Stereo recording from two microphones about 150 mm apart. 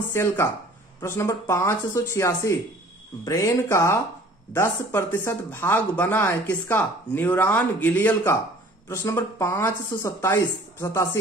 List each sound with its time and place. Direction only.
0.1 s speech: 15° left (ahead or behind)